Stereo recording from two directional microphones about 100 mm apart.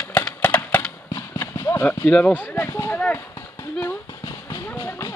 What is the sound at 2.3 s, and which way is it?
Speech, 20° left (ahead or behind).